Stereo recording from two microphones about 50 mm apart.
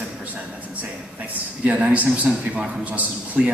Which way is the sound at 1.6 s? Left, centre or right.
Right.